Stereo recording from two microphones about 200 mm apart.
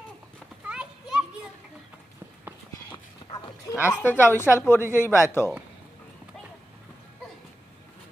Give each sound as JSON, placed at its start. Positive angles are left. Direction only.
{"t": 0.7, "sound": "children playing", "side_deg": -5}
{"t": 3.2, "sound": "dog", "side_deg": 25}
{"t": 3.9, "sound": "a woman's voice", "side_deg": 10}